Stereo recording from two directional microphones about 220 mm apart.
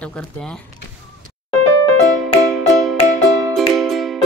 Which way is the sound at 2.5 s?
Centre (ahead or behind).